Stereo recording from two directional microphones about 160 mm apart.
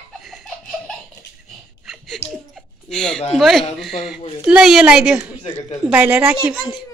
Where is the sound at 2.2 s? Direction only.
40° left (ahead or behind).